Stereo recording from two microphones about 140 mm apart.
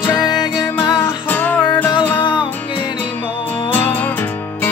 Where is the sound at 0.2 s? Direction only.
30° left (ahead or behind).